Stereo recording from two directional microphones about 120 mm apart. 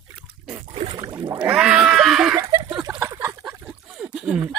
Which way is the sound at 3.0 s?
25° right (ahead or behind).